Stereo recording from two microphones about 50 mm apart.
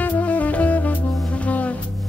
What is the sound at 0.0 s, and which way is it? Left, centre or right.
Saxophone, left.